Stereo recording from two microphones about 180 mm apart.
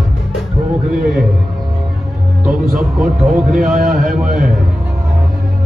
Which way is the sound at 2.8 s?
5° right (ahead or behind).